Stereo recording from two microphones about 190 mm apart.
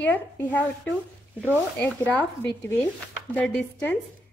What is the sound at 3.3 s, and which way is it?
Speech, 5° left (ahead or behind).